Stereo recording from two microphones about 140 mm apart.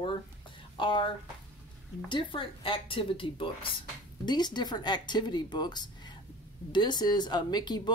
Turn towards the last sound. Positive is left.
turn(degrees=30)  # may be behind; listen again after turning